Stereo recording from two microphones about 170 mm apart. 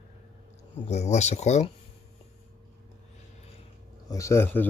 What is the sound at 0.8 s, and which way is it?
Speech, 40° left (ahead or behind).